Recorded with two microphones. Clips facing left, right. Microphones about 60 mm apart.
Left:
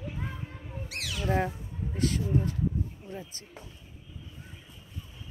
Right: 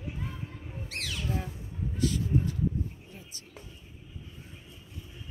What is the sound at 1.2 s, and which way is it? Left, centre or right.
Speech, left.